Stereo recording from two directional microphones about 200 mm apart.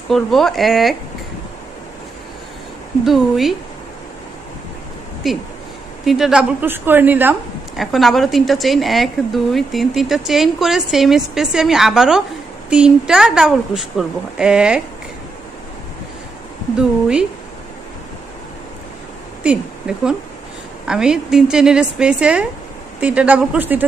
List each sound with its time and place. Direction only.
0.1 s a woman's voice: centre (ahead or behind)
3.1 s a woman's voice: centre (ahead or behind)
5.2 s a woman's voice: centre (ahead or behind)
19.4 s a woman's voice: 5° right (ahead or behind)